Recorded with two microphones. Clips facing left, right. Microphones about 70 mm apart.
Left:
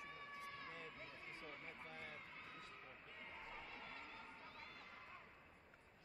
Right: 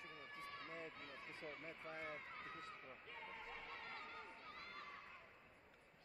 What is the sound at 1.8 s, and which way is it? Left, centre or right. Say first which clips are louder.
Speech: right 4 dB; right.